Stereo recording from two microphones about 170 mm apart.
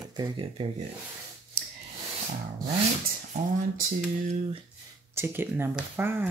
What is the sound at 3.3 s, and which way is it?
Speech, 45° right (ahead or behind).